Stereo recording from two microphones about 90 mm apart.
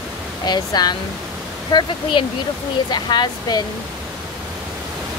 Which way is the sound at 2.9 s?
50° left (ahead or behind).